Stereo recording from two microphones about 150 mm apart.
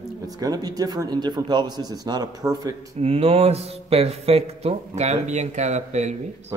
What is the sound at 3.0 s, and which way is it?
Speech, 40° right (ahead or behind).